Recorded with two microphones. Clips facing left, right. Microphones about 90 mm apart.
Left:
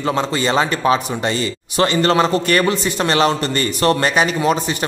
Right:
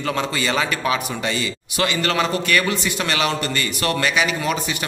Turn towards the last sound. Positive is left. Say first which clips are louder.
# left 5 dB
turn(degrees=35)  # may be behind; listen again after turning